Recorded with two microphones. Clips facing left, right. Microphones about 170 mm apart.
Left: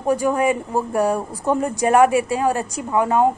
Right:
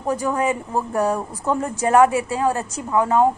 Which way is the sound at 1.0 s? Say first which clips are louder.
Left 2 dB; 10° left (ahead or behind).